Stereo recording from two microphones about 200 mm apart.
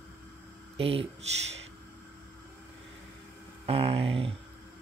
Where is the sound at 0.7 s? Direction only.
30° right (ahead or behind).